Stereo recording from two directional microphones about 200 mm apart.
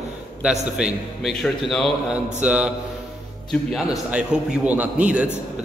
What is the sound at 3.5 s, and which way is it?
A man's voice, 5° left (ahead or behind).